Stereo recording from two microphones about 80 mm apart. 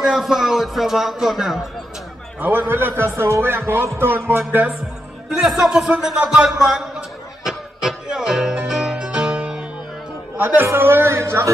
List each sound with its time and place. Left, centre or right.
0.0 s speech: centre
2.4 s speech: right
5.3 s music: centre
10.3 s speech: right